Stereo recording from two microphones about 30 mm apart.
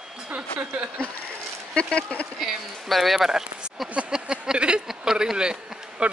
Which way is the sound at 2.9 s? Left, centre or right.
Centre.